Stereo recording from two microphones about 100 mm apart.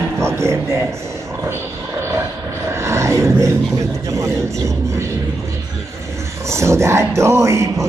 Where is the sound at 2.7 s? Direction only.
30° right (ahead or behind).